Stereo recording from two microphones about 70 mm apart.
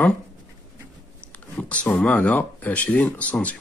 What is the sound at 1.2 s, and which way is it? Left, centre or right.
Speech, centre.